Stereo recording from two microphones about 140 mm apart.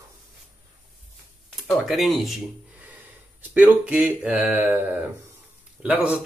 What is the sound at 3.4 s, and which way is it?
Speech, 15° right (ahead or behind).